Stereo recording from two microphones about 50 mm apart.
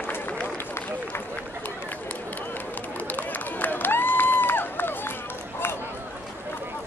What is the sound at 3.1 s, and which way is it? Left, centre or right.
Run, left.